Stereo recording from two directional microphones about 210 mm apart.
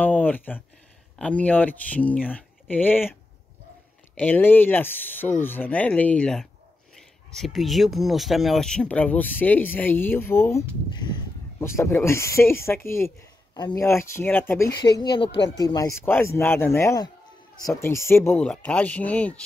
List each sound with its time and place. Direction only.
0.0 s speech: 10° left (ahead or behind)
11.6 s speech: 10° left (ahead or behind)
14.8 s speech: 20° left (ahead or behind); by 19.4 s 5° left (ahead or behind)